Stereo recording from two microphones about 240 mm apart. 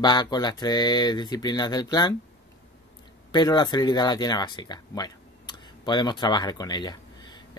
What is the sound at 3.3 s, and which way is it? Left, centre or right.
Speech, centre.